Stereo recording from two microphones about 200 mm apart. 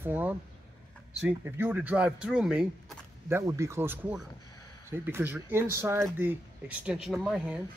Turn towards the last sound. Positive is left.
turn(degrees=-5)  # may be behind; listen again after turning